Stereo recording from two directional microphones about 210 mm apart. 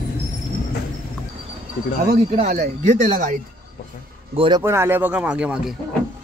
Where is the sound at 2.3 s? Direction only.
30° right (ahead or behind).